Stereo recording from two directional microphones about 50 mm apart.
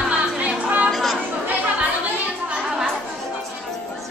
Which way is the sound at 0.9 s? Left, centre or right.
Centre.